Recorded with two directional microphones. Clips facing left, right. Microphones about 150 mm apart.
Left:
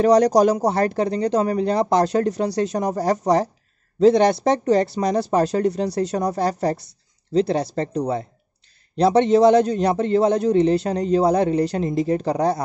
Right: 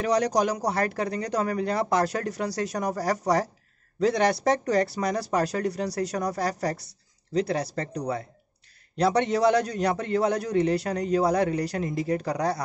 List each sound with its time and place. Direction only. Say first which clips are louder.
0.0 s a man's voice: left 9 dB; 35° left (ahead or behind)